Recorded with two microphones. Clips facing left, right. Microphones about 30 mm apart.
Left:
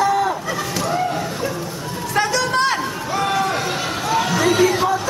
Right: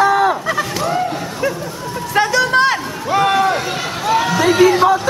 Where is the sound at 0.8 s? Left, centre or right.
Centre.